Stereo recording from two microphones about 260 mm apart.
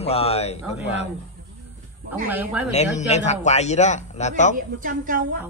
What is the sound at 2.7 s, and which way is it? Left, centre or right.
Speech, left.